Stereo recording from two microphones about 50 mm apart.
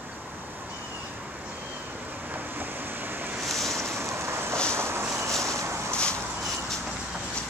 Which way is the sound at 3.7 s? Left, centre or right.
Right.